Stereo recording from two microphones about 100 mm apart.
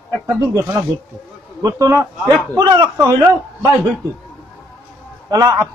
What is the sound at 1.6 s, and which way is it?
Speech, 35° right (ahead or behind).